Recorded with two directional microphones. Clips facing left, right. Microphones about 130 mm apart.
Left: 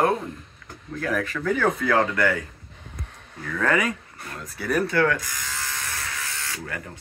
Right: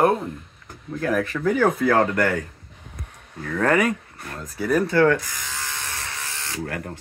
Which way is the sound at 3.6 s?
35° right (ahead or behind).